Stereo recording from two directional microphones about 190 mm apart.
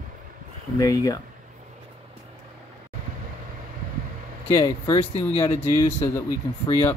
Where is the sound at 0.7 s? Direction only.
20° left (ahead or behind).